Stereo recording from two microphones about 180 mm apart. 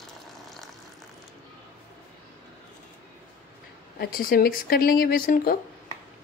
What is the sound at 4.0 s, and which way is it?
Speech, 55° left (ahead or behind).